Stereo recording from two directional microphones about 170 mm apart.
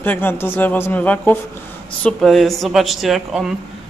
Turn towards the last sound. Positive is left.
turn(degrees=0)  # may be behind; listen again after turning